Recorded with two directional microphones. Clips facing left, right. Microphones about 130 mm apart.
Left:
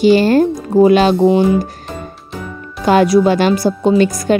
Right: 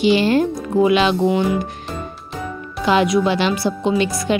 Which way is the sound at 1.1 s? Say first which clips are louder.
Left 6 dB; 25° left (ahead or behind).